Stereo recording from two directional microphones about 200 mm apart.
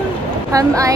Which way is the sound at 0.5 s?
15° right (ahead or behind).